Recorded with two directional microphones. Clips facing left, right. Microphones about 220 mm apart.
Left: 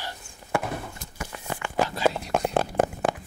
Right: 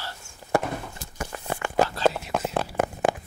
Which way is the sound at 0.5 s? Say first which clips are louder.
Right 3 dB; 40° right (ahead or behind).